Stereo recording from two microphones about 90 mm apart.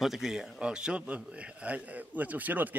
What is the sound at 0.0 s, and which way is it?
A man's voice, centre (ahead or behind).